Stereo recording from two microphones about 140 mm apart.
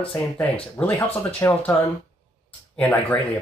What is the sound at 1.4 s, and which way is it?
Speech, 20° left (ahead or behind).